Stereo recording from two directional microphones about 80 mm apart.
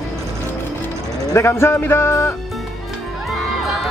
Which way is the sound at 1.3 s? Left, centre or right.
Left.